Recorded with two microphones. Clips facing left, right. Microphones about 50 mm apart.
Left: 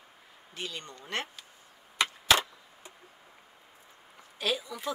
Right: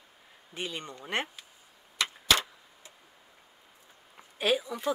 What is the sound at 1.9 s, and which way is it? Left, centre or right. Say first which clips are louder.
Clock: left 2 dB; left.